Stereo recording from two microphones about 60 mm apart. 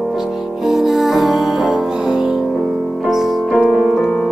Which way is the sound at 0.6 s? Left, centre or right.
Centre.